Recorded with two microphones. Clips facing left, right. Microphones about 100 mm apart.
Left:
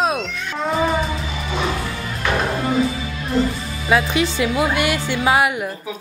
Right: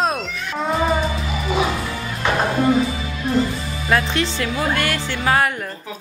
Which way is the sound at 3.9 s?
5° left (ahead or behind).